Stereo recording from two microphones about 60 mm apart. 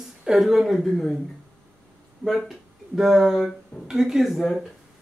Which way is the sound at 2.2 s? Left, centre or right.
Centre.